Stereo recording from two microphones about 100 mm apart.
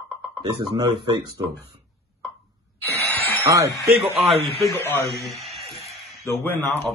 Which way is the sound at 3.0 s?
20° left (ahead or behind).